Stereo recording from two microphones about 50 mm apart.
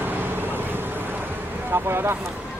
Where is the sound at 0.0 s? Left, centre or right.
Right.